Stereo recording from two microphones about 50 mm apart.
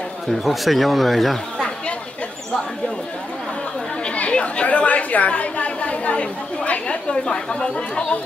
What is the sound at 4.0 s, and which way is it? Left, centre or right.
Chatter, left.